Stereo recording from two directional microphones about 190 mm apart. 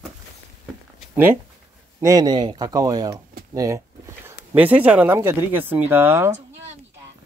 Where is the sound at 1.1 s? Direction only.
10° right (ahead or behind).